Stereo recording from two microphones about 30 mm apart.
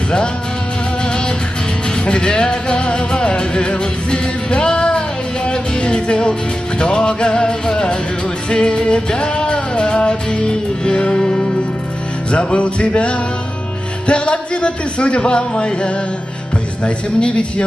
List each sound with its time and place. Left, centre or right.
1.0 s music: left
2.0 s speech: left
2.5 s music: left
6.8 s speech: left
7.7 s music: left
8.5 s speech: left
8.8 s music: left
10.8 s speech: left
11.2 s music: left
12.3 s speech: left
14.0 s music: left
14.3 s speech: left
17.3 s speech: left